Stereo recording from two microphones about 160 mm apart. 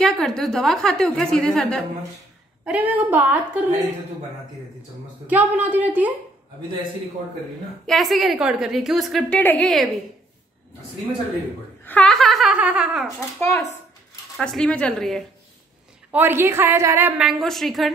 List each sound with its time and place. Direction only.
0.0 s a woman's voice: 5° left (ahead or behind)
2.6 s a woman's voice: 10° right (ahead or behind)
5.2 s a woman's voice: 10° right (ahead or behind)
7.8 s a woman's voice: centre (ahead or behind)
11.8 s a woman's voice: 10° left (ahead or behind)
13.4 s a woman's voice: 15° left (ahead or behind)
14.3 s a woman's voice: centre (ahead or behind)
16.1 s a woman's voice: 15° right (ahead or behind)
17.2 s a woman's voice: centre (ahead or behind)